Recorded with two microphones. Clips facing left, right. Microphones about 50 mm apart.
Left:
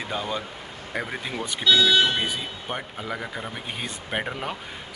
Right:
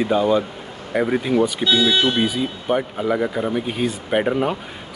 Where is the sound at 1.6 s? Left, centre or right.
Right.